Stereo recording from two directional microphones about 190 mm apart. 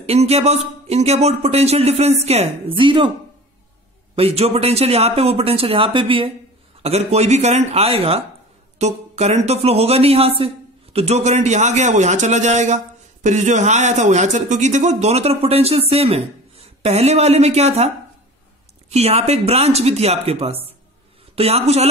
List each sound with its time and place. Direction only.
0.0 s speech: 35° right (ahead or behind)
4.1 s speech: 30° right (ahead or behind)